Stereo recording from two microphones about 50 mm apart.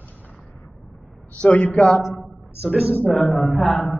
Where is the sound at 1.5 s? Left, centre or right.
Left.